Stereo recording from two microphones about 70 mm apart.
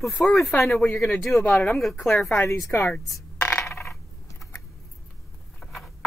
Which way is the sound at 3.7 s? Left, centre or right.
Left.